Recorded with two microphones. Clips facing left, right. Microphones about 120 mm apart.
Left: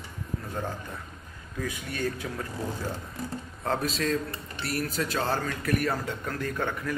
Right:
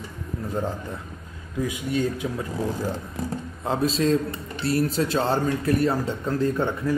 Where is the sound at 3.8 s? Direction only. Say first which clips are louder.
Right 7 dB; 30° right (ahead or behind).